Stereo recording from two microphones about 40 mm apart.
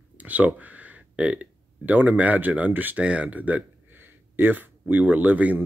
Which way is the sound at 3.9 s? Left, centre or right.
Right.